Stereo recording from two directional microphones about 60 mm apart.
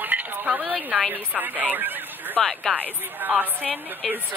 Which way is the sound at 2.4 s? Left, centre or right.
Centre.